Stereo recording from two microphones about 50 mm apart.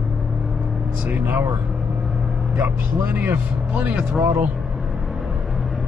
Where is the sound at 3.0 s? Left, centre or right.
Right.